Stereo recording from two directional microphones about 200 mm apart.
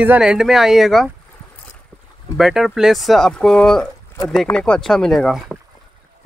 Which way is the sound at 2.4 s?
Centre (ahead or behind).